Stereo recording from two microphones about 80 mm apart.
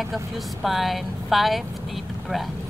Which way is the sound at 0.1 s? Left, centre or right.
Centre.